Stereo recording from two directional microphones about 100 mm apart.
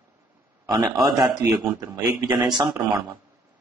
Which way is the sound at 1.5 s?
40° right (ahead or behind).